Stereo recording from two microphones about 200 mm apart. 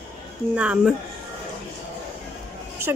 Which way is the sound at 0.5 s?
5° right (ahead or behind).